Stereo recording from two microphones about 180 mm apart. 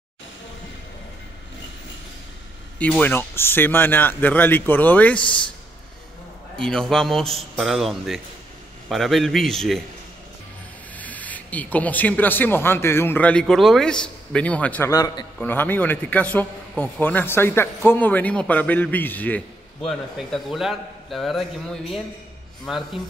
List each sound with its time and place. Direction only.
2.8 s a man's voice: 10° left (ahead or behind)
6.6 s a man's voice: 5° left (ahead or behind)
11.0 s a man's voice: 10° left (ahead or behind)
14.9 s a man's voice: 20° left (ahead or behind)
15.3 s a man's voice: 10° left (ahead or behind)
19.9 s a man's voice: centre (ahead or behind)